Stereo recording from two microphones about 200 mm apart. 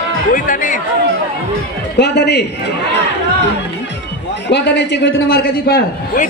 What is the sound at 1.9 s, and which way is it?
Speech, 55° left (ahead or behind).